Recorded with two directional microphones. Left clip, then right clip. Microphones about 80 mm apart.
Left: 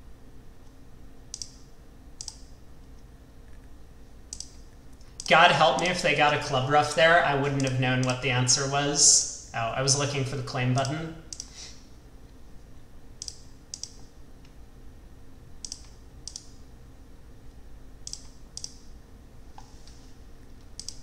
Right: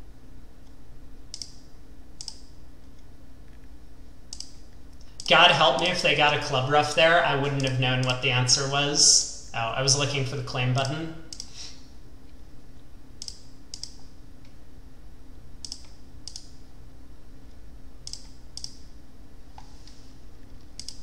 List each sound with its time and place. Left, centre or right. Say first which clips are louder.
5.1 s a man's voice: right 1 dB; centre
13.2 s computer keyboard: even; centre
18.0 s clicking: right 1 dB; centre